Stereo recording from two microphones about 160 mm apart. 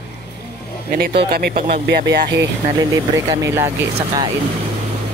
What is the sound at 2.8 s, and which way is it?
Speech, 15° right (ahead or behind).